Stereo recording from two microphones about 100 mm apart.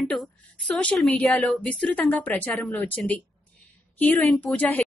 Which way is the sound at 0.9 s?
Centre (ahead or behind).